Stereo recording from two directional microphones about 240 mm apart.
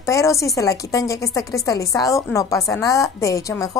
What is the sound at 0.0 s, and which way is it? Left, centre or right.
Speech, centre.